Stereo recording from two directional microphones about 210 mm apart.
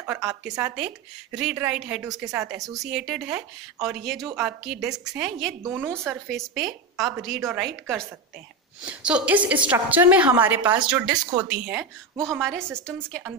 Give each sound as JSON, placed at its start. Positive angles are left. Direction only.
{"t": 0.0, "sound": "a woman's voice", "side_deg": -15}
{"t": 2.9, "sound": "speech", "side_deg": -5}
{"t": 4.8, "sound": "a woman's voice", "side_deg": -15}
{"t": 5.2, "sound": "a woman's voice", "side_deg": 0}
{"t": 8.8, "sound": "a woman's voice", "side_deg": -5}
{"t": 12.3, "sound": "speech", "side_deg": 0}